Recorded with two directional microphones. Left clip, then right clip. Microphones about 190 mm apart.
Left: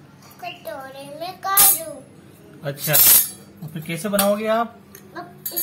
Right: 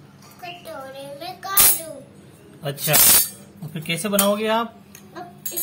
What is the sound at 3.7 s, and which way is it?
Speech, 15° right (ahead or behind).